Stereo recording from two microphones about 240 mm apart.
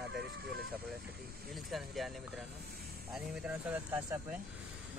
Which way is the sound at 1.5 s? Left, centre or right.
Centre.